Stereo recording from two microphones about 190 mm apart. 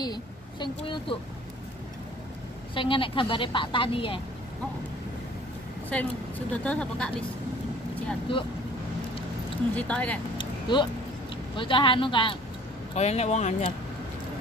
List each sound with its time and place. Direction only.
0.0 s a woman's voice: 25° left (ahead or behind)
2.7 s a woman's voice: 25° left (ahead or behind)
5.9 s a woman's voice: 5° left (ahead or behind)
8.3 s a woman's voice: 30° left (ahead or behind)
9.8 s speech: 5° left (ahead or behind)
10.3 s vehicle: 25° left (ahead or behind)
11.5 s a woman's voice: 25° left (ahead or behind)